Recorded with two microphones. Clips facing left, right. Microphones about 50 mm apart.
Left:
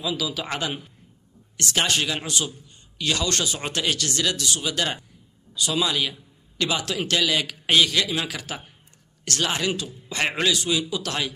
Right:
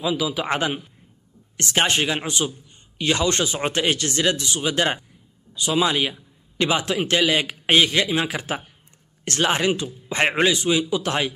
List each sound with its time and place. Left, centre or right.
0.0 s a man's voice: right